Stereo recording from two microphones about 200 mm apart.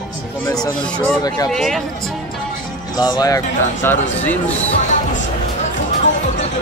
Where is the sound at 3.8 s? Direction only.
10° left (ahead or behind).